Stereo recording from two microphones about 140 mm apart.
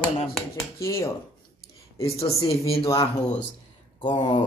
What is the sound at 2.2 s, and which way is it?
Speech, 20° left (ahead or behind).